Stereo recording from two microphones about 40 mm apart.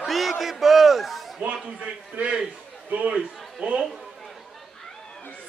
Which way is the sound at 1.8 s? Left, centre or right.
Right.